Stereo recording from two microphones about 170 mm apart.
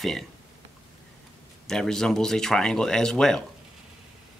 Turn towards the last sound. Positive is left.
turn(degrees=5)  # may be behind; listen again after turning